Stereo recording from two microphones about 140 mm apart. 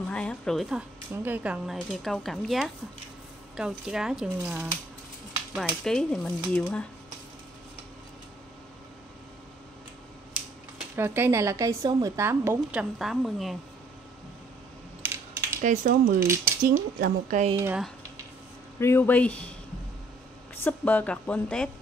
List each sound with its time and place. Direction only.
0.1 s speech: 5° left (ahead or behind)
1.1 s speech: 15° right (ahead or behind)
5.5 s speech: centre (ahead or behind)
11.0 s a woman's voice: 15° right (ahead or behind)
13.0 s speech: centre (ahead or behind)
15.0 s mechanisms: 15° right (ahead or behind)
15.6 s speech: 70° right (ahead or behind)
16.2 s speech: 15° right (ahead or behind)
16.6 s speech: 90° right
18.8 s speech: 15° left (ahead or behind)
20.5 s speech: 15° left (ahead or behind)